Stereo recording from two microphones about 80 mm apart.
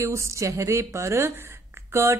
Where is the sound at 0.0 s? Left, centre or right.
Right.